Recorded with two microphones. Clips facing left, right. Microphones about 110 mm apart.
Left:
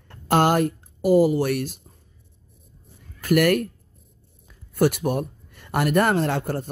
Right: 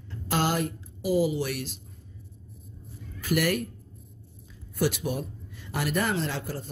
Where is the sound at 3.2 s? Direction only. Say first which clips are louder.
Left 7 dB; 55° left (ahead or behind).